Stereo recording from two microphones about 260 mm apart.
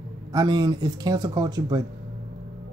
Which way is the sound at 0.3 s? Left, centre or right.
Centre.